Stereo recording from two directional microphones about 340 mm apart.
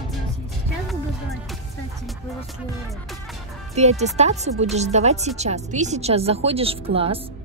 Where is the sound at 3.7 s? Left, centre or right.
Centre.